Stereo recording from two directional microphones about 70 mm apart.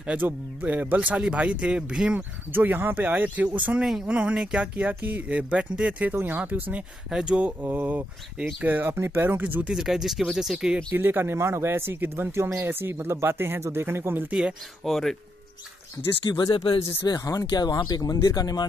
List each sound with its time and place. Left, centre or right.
0.0 s speech: centre
2.5 s speech: right
3.8 s speech: centre
4.7 s speech: right
7.1 s speech: centre
7.6 s speech: right
9.7 s speech: centre
11.0 s speech: right
14.9 s speech: centre
16.3 s speech: left